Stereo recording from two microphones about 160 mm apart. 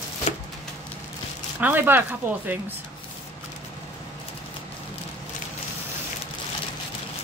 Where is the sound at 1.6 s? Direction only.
10° right (ahead or behind).